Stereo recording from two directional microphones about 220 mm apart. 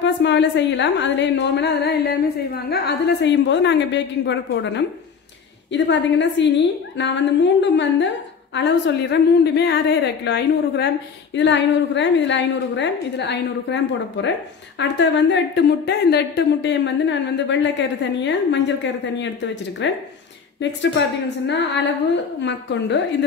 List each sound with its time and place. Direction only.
0.0 s a woman's voice: 55° left (ahead or behind)
19.8 s a woman's voice: 55° left (ahead or behind)